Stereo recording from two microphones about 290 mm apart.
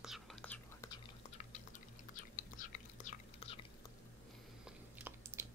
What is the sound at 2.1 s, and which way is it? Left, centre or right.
Whispering, left.